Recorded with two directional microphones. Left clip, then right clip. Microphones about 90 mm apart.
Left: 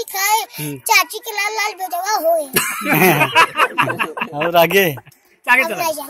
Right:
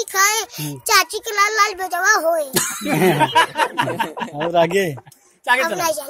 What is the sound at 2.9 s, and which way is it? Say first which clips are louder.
Snicker: left 3 dB; 25° left (ahead or behind).